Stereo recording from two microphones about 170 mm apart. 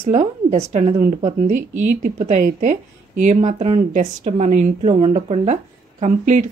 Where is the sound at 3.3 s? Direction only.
40° right (ahead or behind).